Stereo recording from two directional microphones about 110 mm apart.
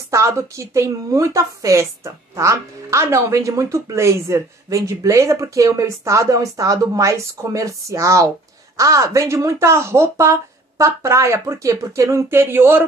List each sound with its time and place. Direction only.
0.1 s a woman's voice: 25° right (ahead or behind)